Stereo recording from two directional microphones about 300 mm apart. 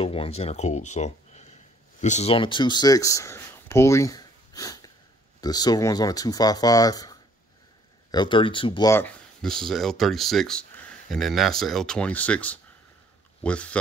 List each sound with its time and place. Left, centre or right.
0.0 s speech: centre